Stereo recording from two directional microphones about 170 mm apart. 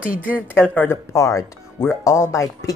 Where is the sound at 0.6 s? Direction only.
15° left (ahead or behind).